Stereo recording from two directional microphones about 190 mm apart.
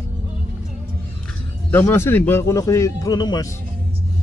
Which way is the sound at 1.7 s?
15° left (ahead or behind).